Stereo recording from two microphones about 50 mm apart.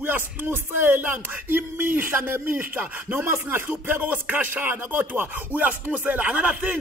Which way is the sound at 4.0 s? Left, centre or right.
Right.